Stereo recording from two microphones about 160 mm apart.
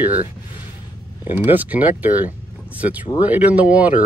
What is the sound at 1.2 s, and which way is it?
Speech, 10° right (ahead or behind).